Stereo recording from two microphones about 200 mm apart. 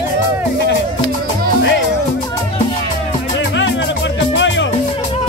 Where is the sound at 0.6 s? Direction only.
60° left (ahead or behind).